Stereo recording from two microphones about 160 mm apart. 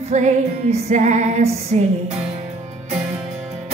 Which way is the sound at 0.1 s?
45° right (ahead or behind).